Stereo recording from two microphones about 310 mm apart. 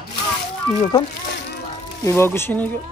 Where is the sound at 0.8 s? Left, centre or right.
Centre.